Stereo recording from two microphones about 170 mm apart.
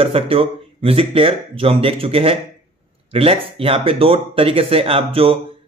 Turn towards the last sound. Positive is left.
turn(degrees=-35)  # may be behind; listen again after turning